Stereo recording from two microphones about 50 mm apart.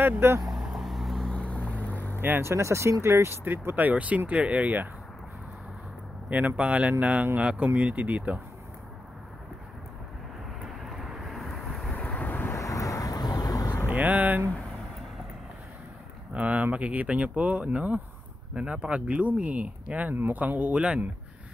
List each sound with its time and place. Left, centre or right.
0.4 s vehicle: centre
1.3 s vehicle: left
2.2 s speech: right
2.5 s speech: right
3.4 s speech: right
6.3 s speech: right
10.9 s vehicle: centre
11.9 s vehicle: left
12.5 s vehicle: left
13.8 s a sound: right
16.3 s speech: right
18.5 s speech: right
20.1 s speech: right